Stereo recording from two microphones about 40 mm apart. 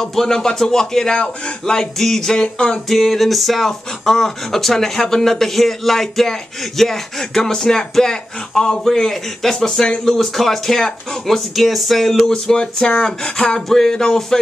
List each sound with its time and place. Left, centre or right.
0.0 s speech: centre
2.4 s a sound: left
2.9 s speech: centre